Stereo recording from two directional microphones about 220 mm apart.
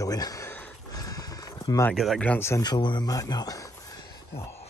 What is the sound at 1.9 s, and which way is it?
Speech, 5° left (ahead or behind).